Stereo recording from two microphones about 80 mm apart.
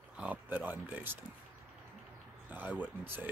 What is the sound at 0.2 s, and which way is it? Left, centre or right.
Speech, centre.